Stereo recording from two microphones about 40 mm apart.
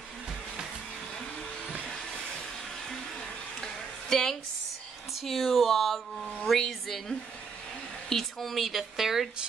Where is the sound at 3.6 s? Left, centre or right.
Centre.